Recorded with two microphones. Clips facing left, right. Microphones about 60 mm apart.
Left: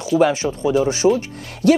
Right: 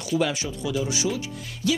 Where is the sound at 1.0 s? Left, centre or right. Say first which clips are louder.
Left 11 dB; left.